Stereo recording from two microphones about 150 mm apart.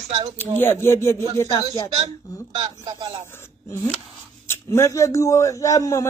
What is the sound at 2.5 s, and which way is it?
Speech, 30° right (ahead or behind).